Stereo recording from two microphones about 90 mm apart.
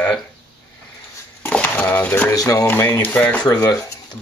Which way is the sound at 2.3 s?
45° left (ahead or behind).